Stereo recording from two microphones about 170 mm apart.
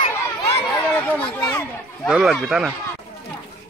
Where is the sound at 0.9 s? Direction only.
10° left (ahead or behind).